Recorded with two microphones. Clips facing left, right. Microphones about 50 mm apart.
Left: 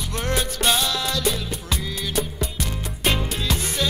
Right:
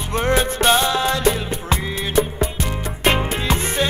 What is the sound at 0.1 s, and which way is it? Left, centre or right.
Music, right.